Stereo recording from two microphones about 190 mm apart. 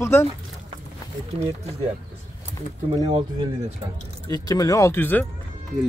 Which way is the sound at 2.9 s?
25° right (ahead or behind).